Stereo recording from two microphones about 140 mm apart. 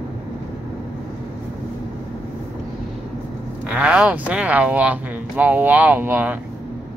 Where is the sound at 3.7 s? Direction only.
10° right (ahead or behind).